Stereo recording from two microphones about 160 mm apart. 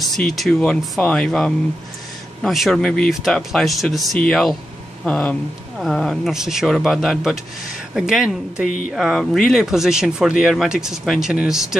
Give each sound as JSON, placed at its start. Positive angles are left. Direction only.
{"t": 0.1, "sound": "speech", "side_deg": 0}